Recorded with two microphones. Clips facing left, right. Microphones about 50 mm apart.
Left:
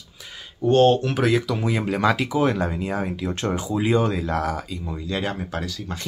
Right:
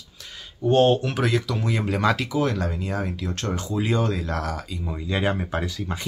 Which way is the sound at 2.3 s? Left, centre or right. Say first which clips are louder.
Left 3 dB; centre.